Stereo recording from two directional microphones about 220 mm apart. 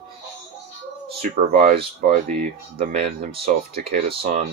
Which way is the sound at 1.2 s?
40° right (ahead or behind).